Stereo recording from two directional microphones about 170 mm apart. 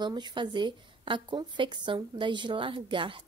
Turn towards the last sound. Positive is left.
turn(degrees=-30)  # may be behind; listen again after turning